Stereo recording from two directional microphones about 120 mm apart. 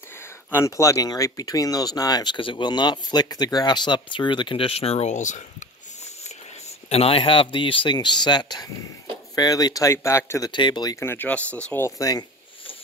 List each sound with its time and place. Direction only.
0.5 s speech: 25° left (ahead or behind); by 5.4 s 90° left
6.9 s speech: 55° left (ahead or behind); by 10.5 s 25° left (ahead or behind)
10.5 s speech: 40° left (ahead or behind)
11.0 s speech: 15° left (ahead or behind)
11.8 s speech: 30° left (ahead or behind)